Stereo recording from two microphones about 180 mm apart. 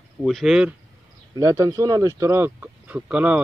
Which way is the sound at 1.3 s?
20° right (ahead or behind).